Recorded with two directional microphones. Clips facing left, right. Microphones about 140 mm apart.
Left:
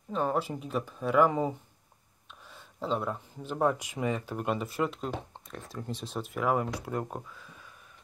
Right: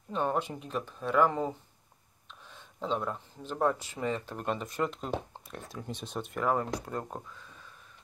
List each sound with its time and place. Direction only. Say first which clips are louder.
0.1 s speech: left 1 dB; centre (ahead or behind)
2.5 s speech: left 1 dB; 5° left (ahead or behind)